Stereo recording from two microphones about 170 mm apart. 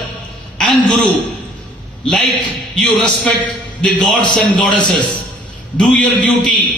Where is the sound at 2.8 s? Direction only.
5° left (ahead or behind).